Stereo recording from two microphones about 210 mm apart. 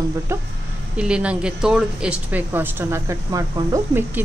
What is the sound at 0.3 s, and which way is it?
A woman's voice, 15° right (ahead or behind).